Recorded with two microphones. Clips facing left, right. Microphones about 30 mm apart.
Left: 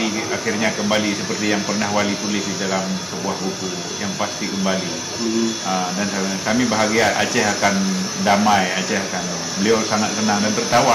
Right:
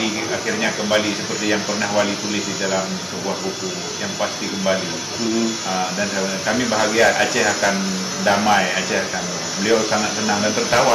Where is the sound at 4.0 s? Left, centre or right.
Centre.